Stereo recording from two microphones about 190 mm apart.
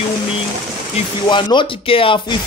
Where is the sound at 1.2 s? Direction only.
25° left (ahead or behind).